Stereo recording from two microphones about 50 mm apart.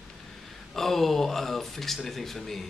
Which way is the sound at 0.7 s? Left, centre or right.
Centre.